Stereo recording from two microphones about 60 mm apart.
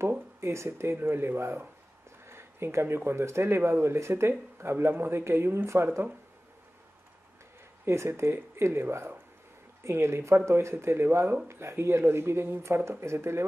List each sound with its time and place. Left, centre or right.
0.4 s speech: right
2.2 s a sound: right
3.1 s speech: right
7.8 s speech: right